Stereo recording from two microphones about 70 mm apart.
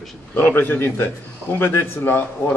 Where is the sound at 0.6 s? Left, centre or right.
Left.